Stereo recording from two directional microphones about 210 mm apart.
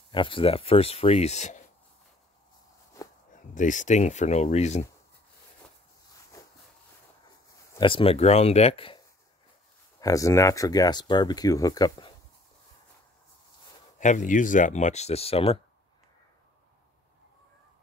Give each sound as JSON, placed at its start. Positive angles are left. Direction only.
{"t": 0.1, "sound": "speech", "side_deg": 25}
{"t": 3.0, "sound": "a sound", "side_deg": 15}
{"t": 3.5, "sound": "speech", "side_deg": 35}
{"t": 7.7, "sound": "speech", "side_deg": 25}
{"t": 13.9, "sound": "speech", "side_deg": 35}